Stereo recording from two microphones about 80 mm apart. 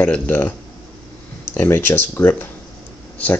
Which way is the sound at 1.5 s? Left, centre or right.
Left.